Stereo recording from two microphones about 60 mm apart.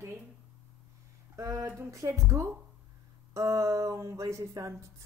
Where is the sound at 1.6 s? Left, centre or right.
Right.